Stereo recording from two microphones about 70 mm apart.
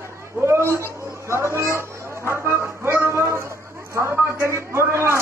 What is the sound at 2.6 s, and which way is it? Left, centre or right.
Music, right.